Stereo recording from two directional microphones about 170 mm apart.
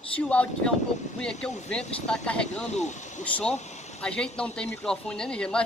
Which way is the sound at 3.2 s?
10° left (ahead or behind).